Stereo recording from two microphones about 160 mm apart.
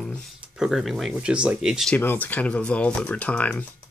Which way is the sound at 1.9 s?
10° left (ahead or behind).